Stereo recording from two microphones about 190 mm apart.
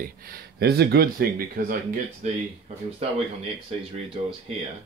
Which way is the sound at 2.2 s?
40° right (ahead or behind).